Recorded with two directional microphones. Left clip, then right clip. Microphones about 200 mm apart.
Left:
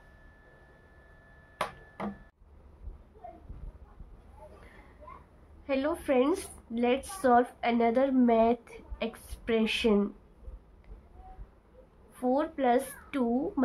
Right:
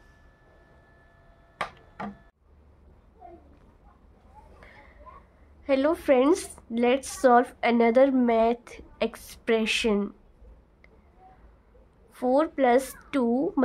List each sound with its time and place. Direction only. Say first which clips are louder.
5.7 s a woman's voice: right 7 dB; 55° right (ahead or behind)
12.1 s a woman's voice: right 6 dB; 55° right (ahead or behind)